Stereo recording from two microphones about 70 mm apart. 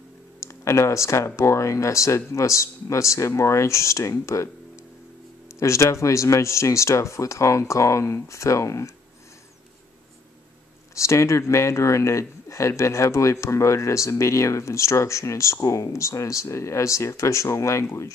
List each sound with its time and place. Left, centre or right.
0.4 s speech: left
5.6 s speech: left
11.0 s speech: left